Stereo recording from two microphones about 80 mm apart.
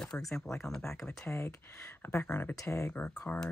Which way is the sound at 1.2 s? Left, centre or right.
Left.